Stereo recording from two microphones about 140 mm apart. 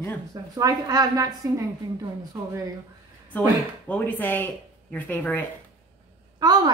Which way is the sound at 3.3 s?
10° left (ahead or behind).